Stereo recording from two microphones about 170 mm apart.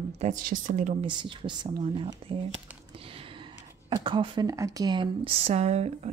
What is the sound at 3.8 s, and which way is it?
Speech, 30° right (ahead or behind).